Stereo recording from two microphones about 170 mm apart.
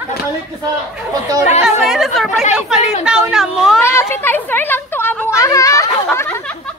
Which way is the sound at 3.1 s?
5° right (ahead or behind).